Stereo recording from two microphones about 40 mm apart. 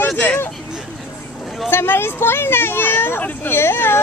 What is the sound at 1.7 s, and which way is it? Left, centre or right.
Speech, left.